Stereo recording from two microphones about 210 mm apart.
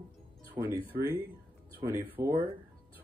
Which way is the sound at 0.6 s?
20° right (ahead or behind).